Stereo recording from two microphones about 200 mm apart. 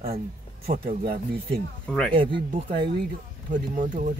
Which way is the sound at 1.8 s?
5° left (ahead or behind).